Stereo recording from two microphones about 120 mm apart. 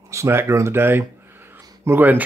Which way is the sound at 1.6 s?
20° right (ahead or behind).